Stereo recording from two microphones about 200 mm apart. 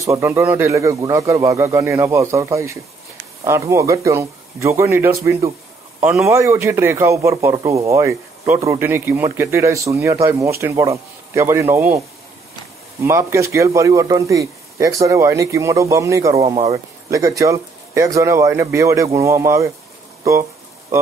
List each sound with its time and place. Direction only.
0.0 s a man's voice: 15° right (ahead or behind)
13.0 s a man's voice: 15° right (ahead or behind)
16.4 s speech: 30° right (ahead or behind)
17.1 s a man's voice: 15° right (ahead or behind)